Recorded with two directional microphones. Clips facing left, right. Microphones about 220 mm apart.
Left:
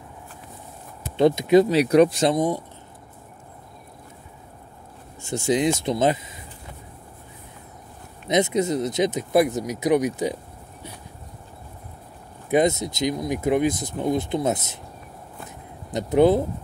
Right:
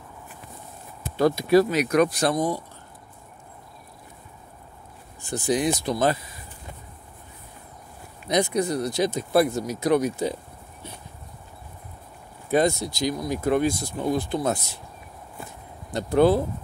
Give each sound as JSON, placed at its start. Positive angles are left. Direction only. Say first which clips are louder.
{"t": 1.1, "sound": "speech", "louder": "left 2 dB", "side_deg": 20}
{"t": 5.2, "sound": "speech", "louder": "left 2 dB", "side_deg": 25}
{"t": 8.3, "sound": "speech", "louder": "left 2 dB", "side_deg": 20}
{"t": 12.4, "sound": "speech", "louder": "left 2 dB", "side_deg": 20}
{"t": 15.9, "sound": "speech", "louder": "left 2 dB", "side_deg": 20}